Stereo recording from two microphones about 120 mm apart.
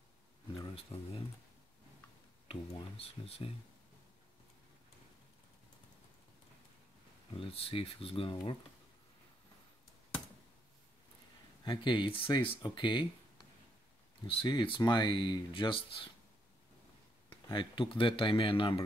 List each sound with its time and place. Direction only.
0.7 s speech: 55° left (ahead or behind)
2.4 s speech: 55° left (ahead or behind)
7.3 s speech: 50° left (ahead or behind)
11.6 s speech: 40° left (ahead or behind)
14.2 s speech: 40° left (ahead or behind)
17.3 s speech: 40° left (ahead or behind)